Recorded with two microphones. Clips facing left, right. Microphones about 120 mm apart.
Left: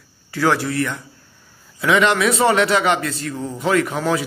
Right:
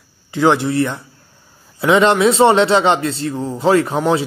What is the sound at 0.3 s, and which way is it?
A man's voice, 20° right (ahead or behind).